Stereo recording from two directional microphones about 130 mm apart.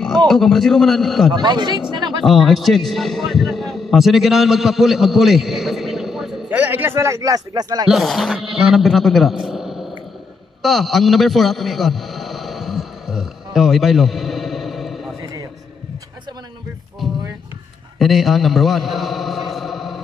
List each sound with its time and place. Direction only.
0.3 s a man's voice: 5° left (ahead or behind)
1.3 s speech: 35° right (ahead or behind)
2.2 s a man's voice: centre (ahead or behind)
6.5 s a man's voice: 15° right (ahead or behind)
7.9 s a man's voice: centre (ahead or behind)
10.6 s a sound: centre (ahead or behind)
17.9 s a sound: centre (ahead or behind)